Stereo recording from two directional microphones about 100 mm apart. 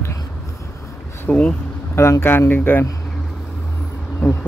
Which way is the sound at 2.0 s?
25° left (ahead or behind).